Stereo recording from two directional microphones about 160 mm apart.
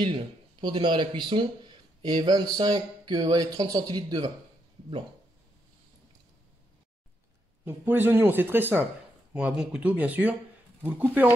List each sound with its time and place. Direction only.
0.0 s speech: 30° right (ahead or behind)
7.6 s speech: 15° right (ahead or behind)